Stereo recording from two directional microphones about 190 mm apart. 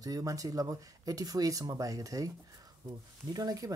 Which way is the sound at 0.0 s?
20° right (ahead or behind).